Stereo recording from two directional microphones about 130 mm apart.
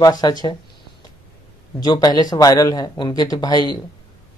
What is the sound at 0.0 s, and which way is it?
Speech, 30° left (ahead or behind).